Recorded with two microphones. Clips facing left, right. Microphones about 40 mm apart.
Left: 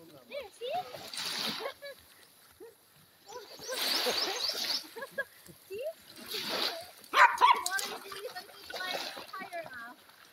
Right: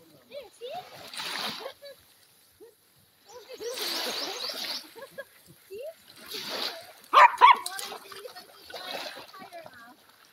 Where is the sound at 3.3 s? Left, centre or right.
Right.